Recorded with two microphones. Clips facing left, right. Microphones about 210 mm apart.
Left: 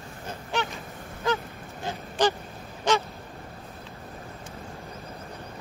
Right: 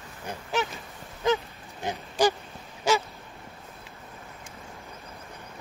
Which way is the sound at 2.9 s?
10° right (ahead or behind).